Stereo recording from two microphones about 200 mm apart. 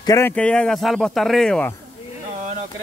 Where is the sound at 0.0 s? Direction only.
15° left (ahead or behind).